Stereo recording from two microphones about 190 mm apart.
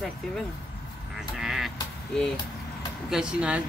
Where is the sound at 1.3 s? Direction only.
Centre (ahead or behind).